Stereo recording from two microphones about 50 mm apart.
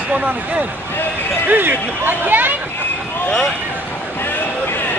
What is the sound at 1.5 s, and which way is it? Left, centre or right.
Speech, right.